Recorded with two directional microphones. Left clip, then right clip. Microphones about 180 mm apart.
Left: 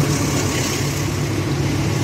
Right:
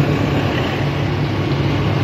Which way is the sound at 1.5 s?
Centre (ahead or behind).